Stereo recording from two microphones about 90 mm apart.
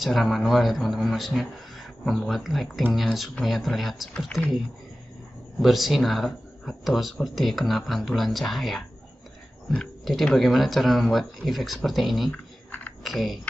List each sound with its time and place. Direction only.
0.0 s speech: centre (ahead or behind)
5.6 s speech: centre (ahead or behind)
12.3 s computer keyboard: 20° left (ahead or behind)
13.0 s speech: centre (ahead or behind)